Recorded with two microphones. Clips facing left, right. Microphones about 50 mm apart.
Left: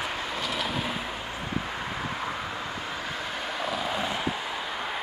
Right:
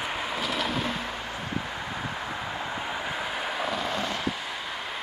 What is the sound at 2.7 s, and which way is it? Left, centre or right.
Vehicle, centre.